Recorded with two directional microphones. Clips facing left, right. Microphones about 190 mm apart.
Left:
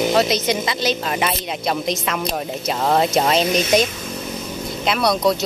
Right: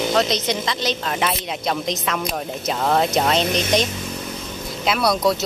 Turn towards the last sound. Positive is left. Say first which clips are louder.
# left 1 dB
turn(degrees=0)  # may be behind; listen again after turning